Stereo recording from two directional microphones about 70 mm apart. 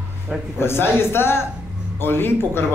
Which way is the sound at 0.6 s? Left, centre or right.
Left.